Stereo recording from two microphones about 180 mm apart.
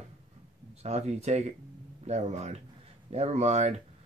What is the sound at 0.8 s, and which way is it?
Speech, 40° right (ahead or behind).